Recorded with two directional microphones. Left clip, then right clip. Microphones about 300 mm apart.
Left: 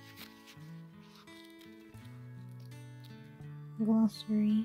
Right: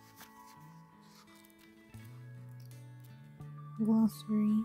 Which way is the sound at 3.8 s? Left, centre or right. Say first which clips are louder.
Even; centre.